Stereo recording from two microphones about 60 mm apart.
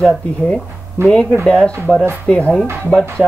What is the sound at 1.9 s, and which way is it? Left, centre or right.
Speech, left.